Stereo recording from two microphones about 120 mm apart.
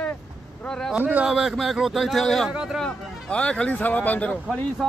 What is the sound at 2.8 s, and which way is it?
Speech, 10° left (ahead or behind).